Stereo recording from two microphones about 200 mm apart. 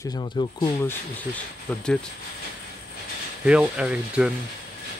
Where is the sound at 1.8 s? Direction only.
5° left (ahead or behind).